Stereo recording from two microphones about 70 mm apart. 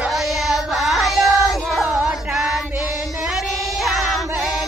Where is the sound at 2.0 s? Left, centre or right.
Centre.